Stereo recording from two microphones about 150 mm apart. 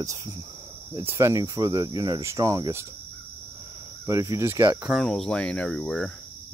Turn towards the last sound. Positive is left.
turn(degrees=5)  # may be behind; listen again after turning